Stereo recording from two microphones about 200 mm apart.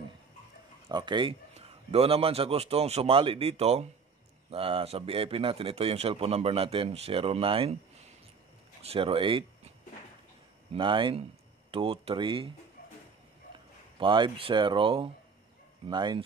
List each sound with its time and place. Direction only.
0.8 s a man's voice: 20° right (ahead or behind)
8.8 s a man's voice: 30° right (ahead or behind)
10.7 s a man's voice: 25° right (ahead or behind)
13.9 s a man's voice: 25° right (ahead or behind)